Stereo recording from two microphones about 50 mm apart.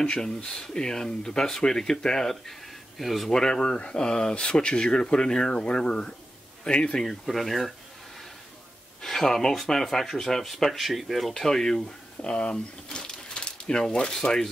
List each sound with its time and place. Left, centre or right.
0.0 s speech: centre
7.0 s speech: centre
9.0 s speech: centre